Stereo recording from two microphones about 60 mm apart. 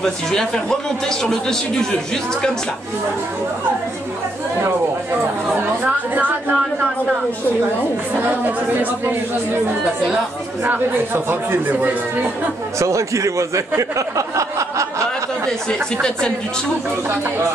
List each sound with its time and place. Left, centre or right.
0.0 s a man's voice: centre
5.5 s a woman's voice: right
8.2 s speech: right
10.6 s speech: right
12.7 s speech: right
16.0 s a man's voice: centre